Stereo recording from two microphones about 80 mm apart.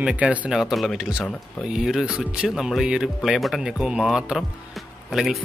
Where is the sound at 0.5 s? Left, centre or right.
Centre.